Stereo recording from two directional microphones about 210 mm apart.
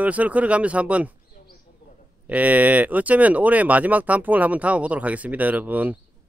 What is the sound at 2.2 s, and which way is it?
Speech, 5° right (ahead or behind).